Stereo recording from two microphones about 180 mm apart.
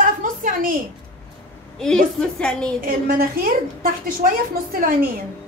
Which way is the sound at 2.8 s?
55° right (ahead or behind).